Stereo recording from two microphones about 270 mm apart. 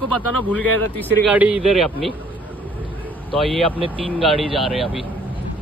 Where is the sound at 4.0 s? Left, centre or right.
Centre.